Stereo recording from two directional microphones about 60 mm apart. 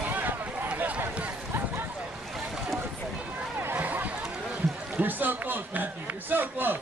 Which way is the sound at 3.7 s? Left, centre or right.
Right.